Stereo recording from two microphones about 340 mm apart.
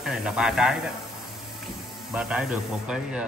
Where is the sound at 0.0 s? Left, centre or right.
Centre.